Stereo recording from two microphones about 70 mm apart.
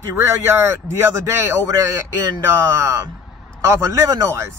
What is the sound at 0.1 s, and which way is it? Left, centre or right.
Speech, right.